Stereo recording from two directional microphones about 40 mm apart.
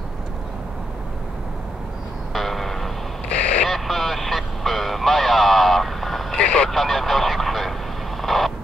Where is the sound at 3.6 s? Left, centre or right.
Centre.